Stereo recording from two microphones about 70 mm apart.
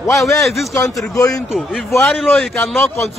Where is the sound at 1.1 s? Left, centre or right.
Left.